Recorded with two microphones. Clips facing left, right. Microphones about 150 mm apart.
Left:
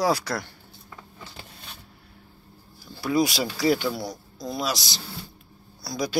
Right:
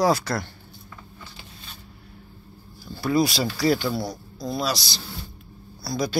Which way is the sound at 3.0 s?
15° left (ahead or behind).